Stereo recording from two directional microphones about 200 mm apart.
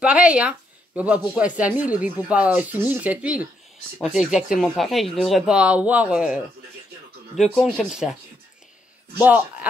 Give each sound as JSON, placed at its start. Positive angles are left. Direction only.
{"t": 0.0, "sound": "speech", "side_deg": -5}
{"t": 9.2, "sound": "speech", "side_deg": -10}